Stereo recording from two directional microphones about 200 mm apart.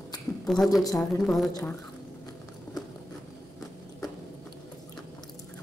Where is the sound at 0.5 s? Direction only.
Centre (ahead or behind).